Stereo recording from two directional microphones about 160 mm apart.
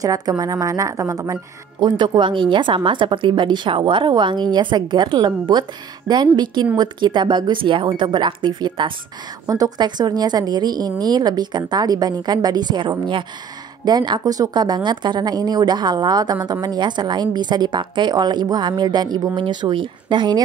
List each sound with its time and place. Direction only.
0.0 s speech: 20° right (ahead or behind)